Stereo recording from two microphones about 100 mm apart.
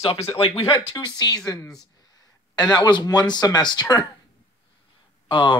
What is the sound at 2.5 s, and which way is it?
Speech, 45° left (ahead or behind).